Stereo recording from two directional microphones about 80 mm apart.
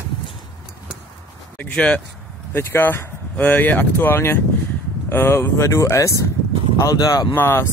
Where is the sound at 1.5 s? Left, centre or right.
Centre.